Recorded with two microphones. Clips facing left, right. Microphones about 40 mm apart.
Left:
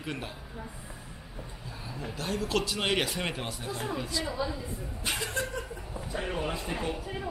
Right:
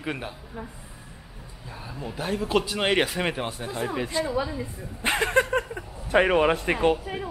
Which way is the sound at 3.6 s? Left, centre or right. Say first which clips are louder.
Right 5 dB; right.